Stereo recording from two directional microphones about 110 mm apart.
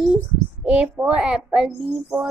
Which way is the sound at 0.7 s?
15° right (ahead or behind).